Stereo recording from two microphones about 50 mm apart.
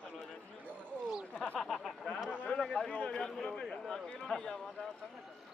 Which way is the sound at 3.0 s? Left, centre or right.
Centre.